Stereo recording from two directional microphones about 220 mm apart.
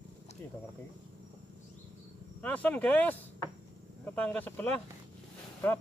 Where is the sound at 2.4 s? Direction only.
5° left (ahead or behind).